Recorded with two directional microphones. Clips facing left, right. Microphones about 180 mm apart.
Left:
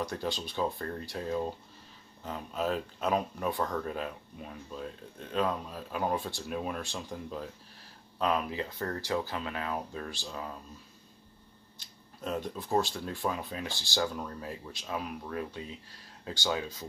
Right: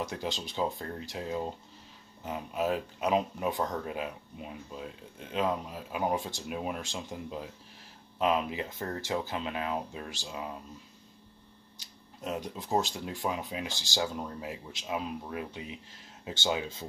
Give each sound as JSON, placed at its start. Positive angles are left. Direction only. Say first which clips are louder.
{"t": 0.0, "sound": "speech", "louder": "left 1 dB", "side_deg": -20}
{"t": 12.2, "sound": "speech", "louder": "left 1 dB", "side_deg": -15}